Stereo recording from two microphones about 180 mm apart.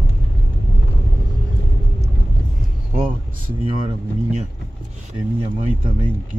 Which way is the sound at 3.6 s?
35° right (ahead or behind).